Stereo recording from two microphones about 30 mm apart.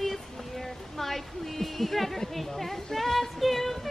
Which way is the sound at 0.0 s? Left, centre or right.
Centre.